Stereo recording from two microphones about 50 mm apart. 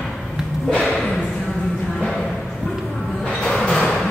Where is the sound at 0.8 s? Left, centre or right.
Centre.